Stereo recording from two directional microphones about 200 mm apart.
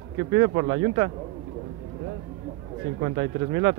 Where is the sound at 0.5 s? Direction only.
60° right (ahead or behind).